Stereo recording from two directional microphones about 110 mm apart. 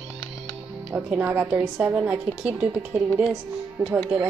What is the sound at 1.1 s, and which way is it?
A woman's voice, 15° right (ahead or behind).